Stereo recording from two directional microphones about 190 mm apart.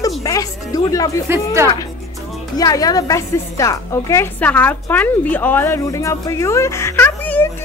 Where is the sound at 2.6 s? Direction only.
20° left (ahead or behind).